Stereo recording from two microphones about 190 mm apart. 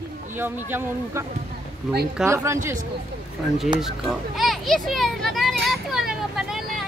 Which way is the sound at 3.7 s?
Centre (ahead or behind).